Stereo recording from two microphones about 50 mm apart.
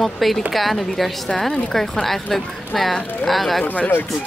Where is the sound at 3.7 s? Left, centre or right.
Left.